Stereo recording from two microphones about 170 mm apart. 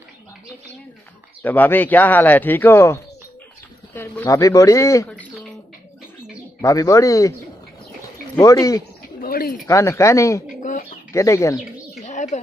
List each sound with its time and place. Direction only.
1.4 s speech: 10° left (ahead or behind)
6.6 s speech: 20° left (ahead or behind)
8.4 s speech: 20° left (ahead or behind)
9.2 s bird: 60° left (ahead or behind)
9.7 s speech: 20° left (ahead or behind)
10.6 s bird: 50° left (ahead or behind)
11.1 s speech: 15° left (ahead or behind)
12.0 s bird: 45° left (ahead or behind)